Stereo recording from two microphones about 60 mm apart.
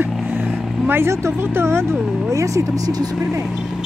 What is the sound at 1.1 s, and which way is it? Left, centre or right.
Speech, right.